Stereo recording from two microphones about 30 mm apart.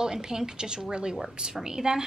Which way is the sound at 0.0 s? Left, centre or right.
Right.